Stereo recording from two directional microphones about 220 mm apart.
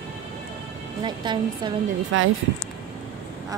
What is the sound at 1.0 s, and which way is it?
Speech, 20° right (ahead or behind).